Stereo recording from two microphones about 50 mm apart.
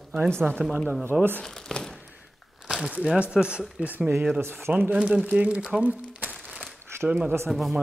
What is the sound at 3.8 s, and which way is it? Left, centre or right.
Speech, right.